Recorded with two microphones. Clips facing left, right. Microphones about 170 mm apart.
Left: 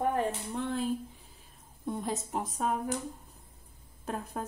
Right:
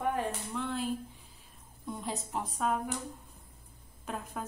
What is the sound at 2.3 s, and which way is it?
Speech, 45° left (ahead or behind).